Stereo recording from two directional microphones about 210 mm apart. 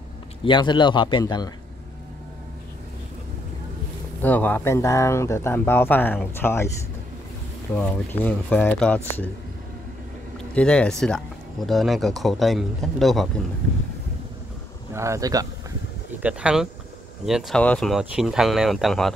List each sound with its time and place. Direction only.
0.4 s speech: 20° left (ahead or behind)
4.2 s speech: 10° left (ahead or behind)
7.7 s speech: 10° left (ahead or behind)
10.5 s speech: 5° left (ahead or behind)
15.0 s speech: 15° right (ahead or behind)
16.2 s speech: 5° right (ahead or behind)